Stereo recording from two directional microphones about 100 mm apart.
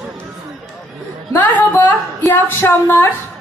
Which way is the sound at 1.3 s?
20° left (ahead or behind).